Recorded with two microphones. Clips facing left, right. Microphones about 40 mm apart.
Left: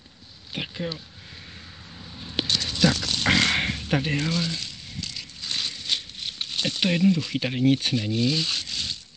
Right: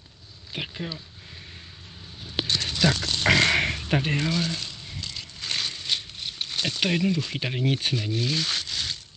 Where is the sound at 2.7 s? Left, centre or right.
Right.